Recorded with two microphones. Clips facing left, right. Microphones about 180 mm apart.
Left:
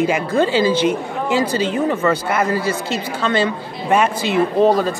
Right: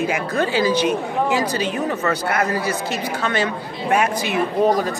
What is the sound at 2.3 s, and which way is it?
Speech, 90° left.